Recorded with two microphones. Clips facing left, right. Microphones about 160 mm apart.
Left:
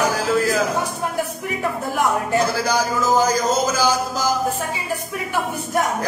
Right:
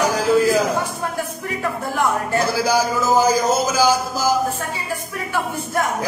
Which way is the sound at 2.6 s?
10° right (ahead or behind).